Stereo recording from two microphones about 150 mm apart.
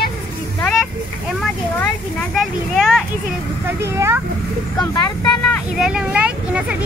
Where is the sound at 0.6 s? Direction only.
Centre (ahead or behind).